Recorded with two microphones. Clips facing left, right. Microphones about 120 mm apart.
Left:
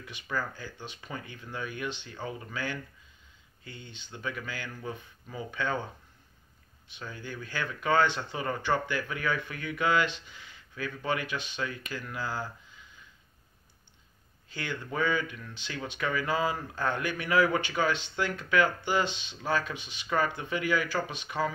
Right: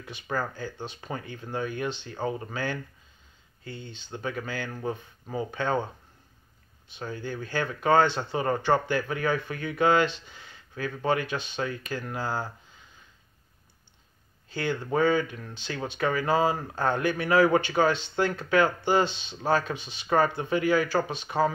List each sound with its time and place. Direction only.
0.3 s speech: 45° right (ahead or behind)
3.6 s speech: 15° left (ahead or behind)
4.1 s speech: 35° right (ahead or behind)
7.0 s speech: 40° right (ahead or behind)
10.2 s a sound: 35° right (ahead or behind)
11.0 s speech: 35° right (ahead or behind)
14.5 s speech: 40° right (ahead or behind)